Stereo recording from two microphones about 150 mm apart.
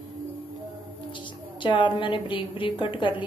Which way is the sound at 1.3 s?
35° left (ahead or behind).